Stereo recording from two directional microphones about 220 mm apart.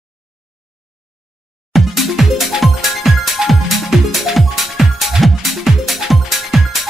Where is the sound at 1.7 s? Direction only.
Centre (ahead or behind).